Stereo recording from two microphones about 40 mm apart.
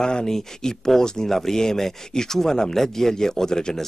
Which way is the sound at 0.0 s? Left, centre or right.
Centre.